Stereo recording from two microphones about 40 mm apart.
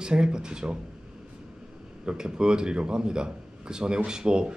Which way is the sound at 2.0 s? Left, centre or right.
Right.